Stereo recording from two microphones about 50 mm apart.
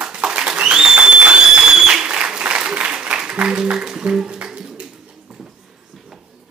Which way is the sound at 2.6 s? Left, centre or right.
Centre.